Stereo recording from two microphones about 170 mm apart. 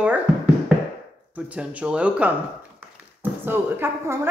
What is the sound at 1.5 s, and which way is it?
A man's voice, 5° right (ahead or behind).